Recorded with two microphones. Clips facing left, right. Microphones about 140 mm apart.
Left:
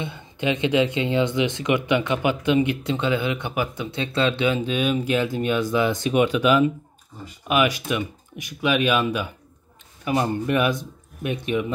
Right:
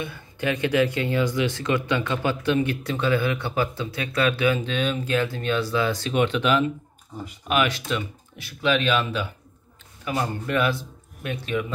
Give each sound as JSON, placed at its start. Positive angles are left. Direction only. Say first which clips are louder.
{"t": 0.0, "sound": "speech", "louder": "left 2 dB", "side_deg": 20}
{"t": 4.6, "sound": "speech", "louder": "left 3 dB", "side_deg": 10}